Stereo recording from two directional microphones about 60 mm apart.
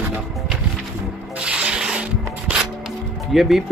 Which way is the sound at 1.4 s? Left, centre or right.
Centre.